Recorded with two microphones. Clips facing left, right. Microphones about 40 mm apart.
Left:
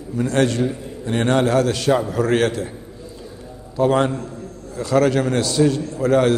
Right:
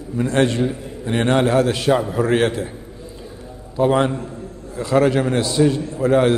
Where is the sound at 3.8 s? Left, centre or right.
Centre.